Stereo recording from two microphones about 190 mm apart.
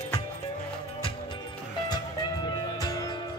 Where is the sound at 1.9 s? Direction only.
20° left (ahead or behind).